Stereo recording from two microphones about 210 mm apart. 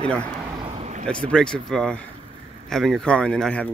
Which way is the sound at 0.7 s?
30° right (ahead or behind).